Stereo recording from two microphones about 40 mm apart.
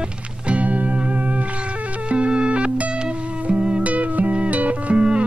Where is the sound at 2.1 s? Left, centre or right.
Right.